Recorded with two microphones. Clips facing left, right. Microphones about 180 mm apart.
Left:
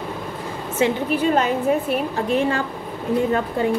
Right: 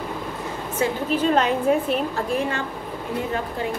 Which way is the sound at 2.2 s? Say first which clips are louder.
Left 4 dB; 25° left (ahead or behind).